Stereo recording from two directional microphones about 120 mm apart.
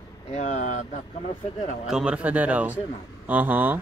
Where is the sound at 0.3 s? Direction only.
75° left (ahead or behind).